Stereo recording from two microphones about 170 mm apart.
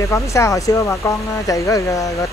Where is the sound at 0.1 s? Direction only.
15° left (ahead or behind).